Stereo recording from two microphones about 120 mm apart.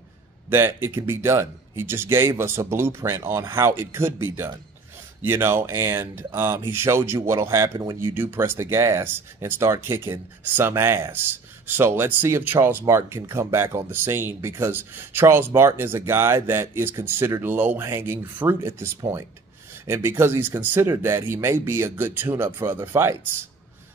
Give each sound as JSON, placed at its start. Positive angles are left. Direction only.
{"t": 0.5, "sound": "speech", "side_deg": -20}
{"t": 8.1, "sound": "speech", "side_deg": -20}